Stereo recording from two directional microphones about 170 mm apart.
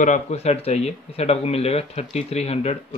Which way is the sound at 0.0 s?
45° left (ahead or behind).